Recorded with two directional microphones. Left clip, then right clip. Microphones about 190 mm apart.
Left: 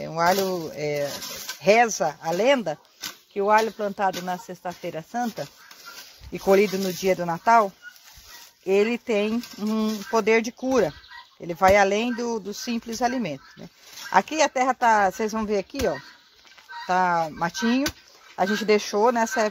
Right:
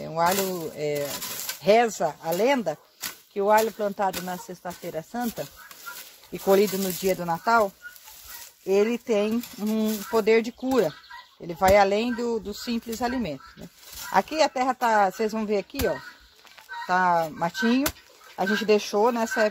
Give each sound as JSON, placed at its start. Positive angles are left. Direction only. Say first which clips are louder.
{"t": 0.0, "sound": "speech", "louder": "left 2 dB", "side_deg": 40}
{"t": 6.3, "sound": "speech", "louder": "left 1 dB", "side_deg": 35}